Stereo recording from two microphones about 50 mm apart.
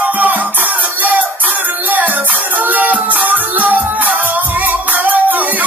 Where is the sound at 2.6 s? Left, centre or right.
Right.